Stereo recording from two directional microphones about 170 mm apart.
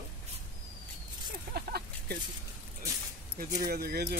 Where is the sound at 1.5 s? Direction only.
70° right (ahead or behind).